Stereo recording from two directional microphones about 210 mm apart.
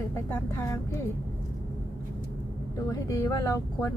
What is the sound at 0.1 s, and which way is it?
Speech, 10° left (ahead or behind).